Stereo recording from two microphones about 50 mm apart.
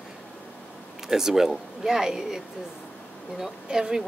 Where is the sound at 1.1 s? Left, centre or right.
Centre.